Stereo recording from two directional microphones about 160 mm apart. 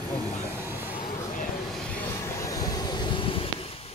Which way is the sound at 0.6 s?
15° right (ahead or behind).